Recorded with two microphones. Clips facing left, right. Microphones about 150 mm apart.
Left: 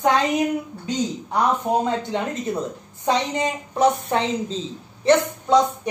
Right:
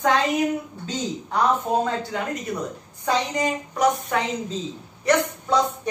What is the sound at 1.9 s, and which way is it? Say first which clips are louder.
A woman's voice: left 2 dB; 25° left (ahead or behind).